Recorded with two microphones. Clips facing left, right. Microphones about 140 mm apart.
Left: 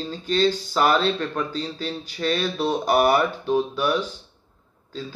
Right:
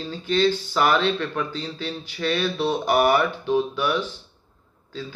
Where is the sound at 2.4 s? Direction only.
10° left (ahead or behind).